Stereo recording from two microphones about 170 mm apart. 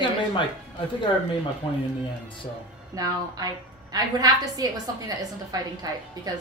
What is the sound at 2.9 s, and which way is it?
A woman's voice, 20° right (ahead or behind).